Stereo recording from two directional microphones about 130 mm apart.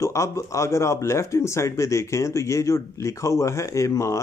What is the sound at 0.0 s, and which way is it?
Speech, 25° left (ahead or behind).